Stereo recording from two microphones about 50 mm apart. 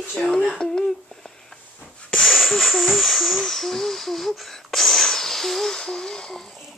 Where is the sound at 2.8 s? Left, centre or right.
Centre.